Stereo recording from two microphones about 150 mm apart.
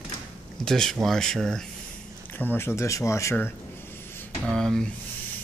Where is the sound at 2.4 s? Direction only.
15° left (ahead or behind).